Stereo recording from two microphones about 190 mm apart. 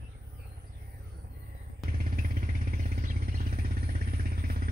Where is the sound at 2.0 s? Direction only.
50° right (ahead or behind).